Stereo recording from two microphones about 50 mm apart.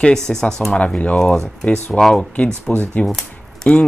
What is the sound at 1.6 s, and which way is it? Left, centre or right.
Speech, left.